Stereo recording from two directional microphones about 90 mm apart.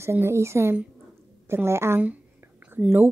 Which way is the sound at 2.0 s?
15° right (ahead or behind).